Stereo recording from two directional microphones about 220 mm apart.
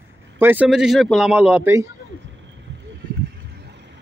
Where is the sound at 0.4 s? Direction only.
10° right (ahead or behind).